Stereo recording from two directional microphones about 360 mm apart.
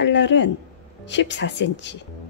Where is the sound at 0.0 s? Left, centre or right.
Left.